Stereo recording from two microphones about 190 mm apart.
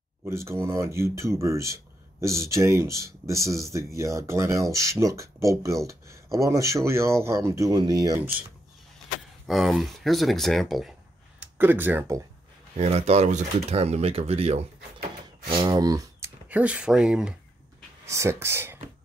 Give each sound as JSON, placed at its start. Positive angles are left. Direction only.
{"t": 0.2, "sound": "speech", "side_deg": -15}
{"t": 9.5, "sound": "speech", "side_deg": 0}
{"t": 12.7, "sound": "speech", "side_deg": -35}
{"t": 18.0, "sound": "speech", "side_deg": -15}